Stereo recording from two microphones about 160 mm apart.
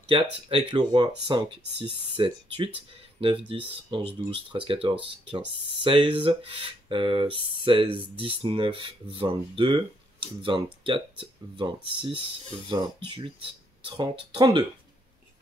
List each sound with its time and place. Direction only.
0.0 s speech: 35° right (ahead or behind)